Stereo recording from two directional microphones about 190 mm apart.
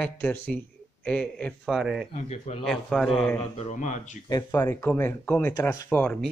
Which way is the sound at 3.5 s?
40° left (ahead or behind).